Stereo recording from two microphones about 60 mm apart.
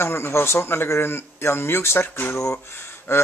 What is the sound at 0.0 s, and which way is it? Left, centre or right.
Speech, left.